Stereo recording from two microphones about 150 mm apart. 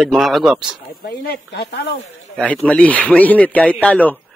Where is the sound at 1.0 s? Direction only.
90° left.